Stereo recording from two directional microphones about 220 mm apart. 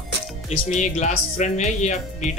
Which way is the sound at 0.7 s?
35° left (ahead or behind).